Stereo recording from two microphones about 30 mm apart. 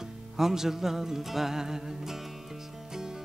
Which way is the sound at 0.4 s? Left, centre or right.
Centre.